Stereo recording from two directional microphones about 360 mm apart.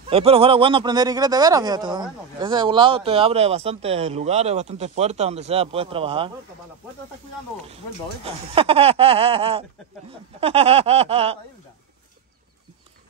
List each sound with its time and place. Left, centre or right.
0.1 s speech: centre
7.6 s speech: centre